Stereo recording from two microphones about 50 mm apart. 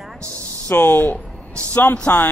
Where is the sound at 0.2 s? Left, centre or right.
Right.